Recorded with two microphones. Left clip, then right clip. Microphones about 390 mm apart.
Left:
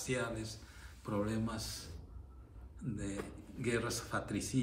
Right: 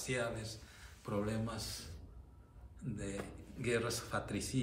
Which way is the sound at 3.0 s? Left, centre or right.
Centre.